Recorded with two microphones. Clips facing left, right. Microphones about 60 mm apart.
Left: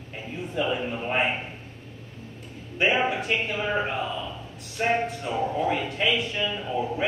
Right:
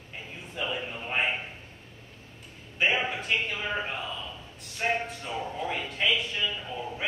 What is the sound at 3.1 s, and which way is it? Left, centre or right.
Speech, centre.